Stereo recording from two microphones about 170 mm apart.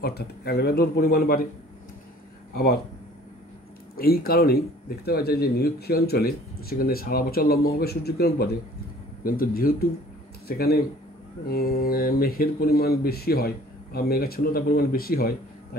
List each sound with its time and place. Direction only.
0.0 s speech: 70° left (ahead or behind)
2.5 s speech: 65° left (ahead or behind)
3.9 s speech: 60° left (ahead or behind)